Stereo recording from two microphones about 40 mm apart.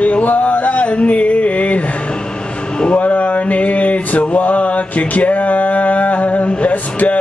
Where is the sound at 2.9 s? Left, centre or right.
Left.